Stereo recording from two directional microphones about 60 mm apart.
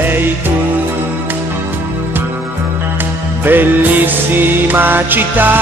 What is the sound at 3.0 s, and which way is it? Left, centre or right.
Music, right.